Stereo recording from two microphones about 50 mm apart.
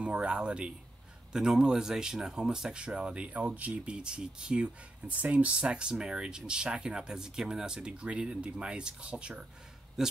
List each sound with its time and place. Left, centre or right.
0.0 s speech: right
10.0 s speech: centre